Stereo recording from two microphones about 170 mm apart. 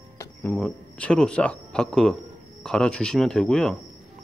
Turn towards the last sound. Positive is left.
turn(degrees=5)  # may be behind; listen again after turning